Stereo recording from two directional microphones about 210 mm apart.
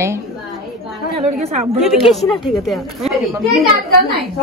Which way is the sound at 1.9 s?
Centre (ahead or behind).